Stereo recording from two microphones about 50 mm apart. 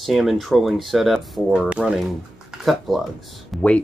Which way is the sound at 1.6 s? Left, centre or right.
Right.